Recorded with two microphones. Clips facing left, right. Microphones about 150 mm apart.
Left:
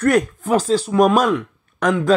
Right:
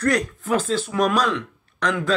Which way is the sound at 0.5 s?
40° left (ahead or behind).